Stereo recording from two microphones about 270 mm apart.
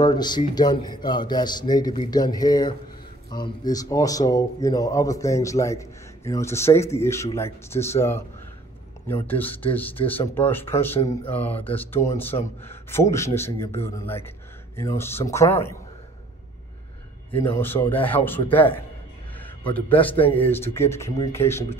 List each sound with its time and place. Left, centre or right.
0.0 s speech: centre
9.2 s speech: centre
17.3 s speech: centre
19.3 s a sound: centre
20.3 s speech: centre